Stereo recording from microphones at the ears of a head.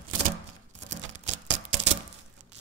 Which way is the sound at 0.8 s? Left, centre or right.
Right.